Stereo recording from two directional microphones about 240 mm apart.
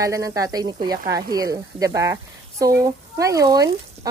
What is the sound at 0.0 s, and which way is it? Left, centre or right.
Speech, centre.